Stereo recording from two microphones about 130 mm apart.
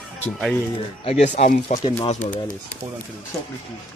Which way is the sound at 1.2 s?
65° left (ahead or behind).